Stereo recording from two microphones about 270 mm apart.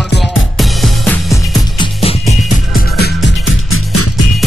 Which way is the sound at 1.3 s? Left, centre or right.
Centre.